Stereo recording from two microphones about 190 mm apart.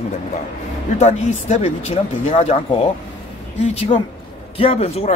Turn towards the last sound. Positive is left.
turn(degrees=30)  # may be behind; listen again after turning